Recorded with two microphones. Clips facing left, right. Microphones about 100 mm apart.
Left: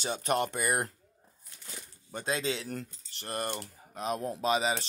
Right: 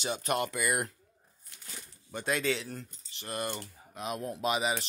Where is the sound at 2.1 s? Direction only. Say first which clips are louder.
Right 1 dB; 30° left (ahead or behind).